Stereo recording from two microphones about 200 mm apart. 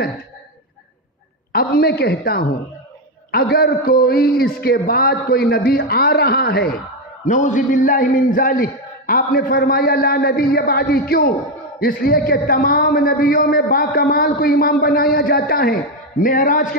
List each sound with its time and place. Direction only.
1.5 s a man's voice: 50° left (ahead or behind)
7.2 s a man's voice: 40° left (ahead or behind)